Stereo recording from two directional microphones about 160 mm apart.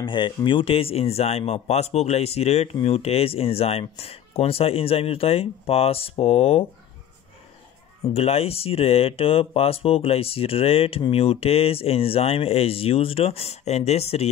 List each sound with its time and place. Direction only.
0.0 s speech: 30° left (ahead or behind)
8.1 s speech: 40° left (ahead or behind)